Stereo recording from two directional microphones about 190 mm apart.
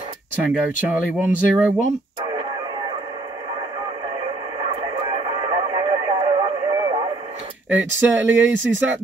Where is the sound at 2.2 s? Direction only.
25° right (ahead or behind).